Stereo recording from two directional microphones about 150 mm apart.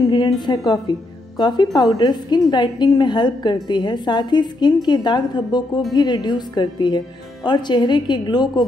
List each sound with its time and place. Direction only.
0.1 s a woman's voice: 30° left (ahead or behind)